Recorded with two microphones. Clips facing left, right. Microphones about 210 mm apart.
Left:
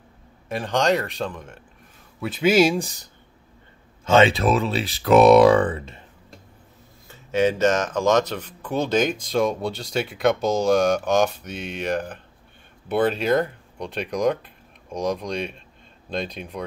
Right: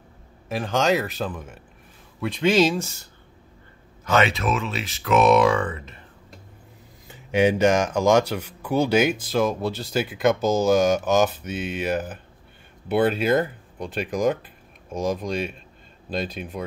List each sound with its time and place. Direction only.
0.5 s speech: centre (ahead or behind); by 3.1 s 15° left (ahead or behind)
4.0 s speech: 25° left (ahead or behind)
7.1 s speech: 15° right (ahead or behind)